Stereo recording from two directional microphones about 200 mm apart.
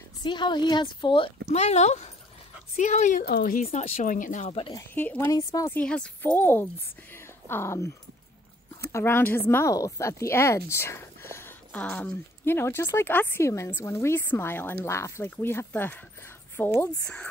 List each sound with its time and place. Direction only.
0.2 s a woman's voice: 25° left (ahead or behind); by 3.6 s 45° left (ahead or behind)
3.6 s speech: 35° left (ahead or behind); by 17.3 s 5° left (ahead or behind)